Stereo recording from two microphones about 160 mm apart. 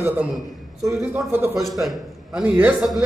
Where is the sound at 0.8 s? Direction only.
15° right (ahead or behind).